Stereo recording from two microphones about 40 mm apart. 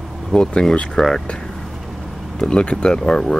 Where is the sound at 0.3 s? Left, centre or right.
Left.